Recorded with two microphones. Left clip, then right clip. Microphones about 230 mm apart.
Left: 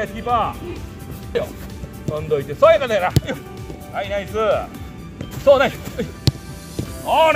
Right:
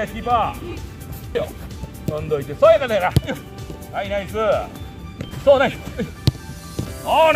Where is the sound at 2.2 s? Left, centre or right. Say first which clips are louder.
Even; left.